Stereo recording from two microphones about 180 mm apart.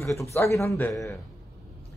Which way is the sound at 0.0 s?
15° left (ahead or behind).